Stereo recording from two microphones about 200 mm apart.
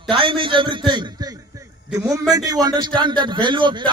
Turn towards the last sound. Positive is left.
turn(degrees=-25)  # may be behind; listen again after turning